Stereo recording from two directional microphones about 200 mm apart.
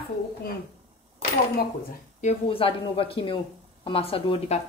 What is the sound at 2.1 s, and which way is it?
A woman's voice, 30° left (ahead or behind).